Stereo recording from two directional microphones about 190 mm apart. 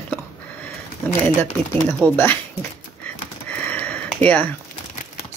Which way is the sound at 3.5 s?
5° left (ahead or behind).